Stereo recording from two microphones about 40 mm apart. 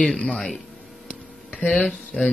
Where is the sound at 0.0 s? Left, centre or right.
Centre.